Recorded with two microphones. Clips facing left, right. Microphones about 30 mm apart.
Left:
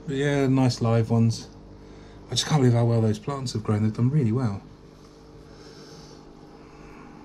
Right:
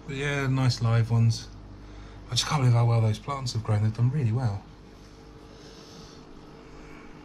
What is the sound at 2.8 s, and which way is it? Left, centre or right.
Speech, right.